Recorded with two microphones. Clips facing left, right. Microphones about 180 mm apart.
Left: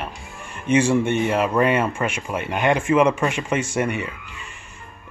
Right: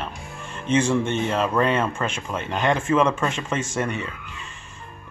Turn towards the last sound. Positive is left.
turn(degrees=10)  # may be behind; listen again after turning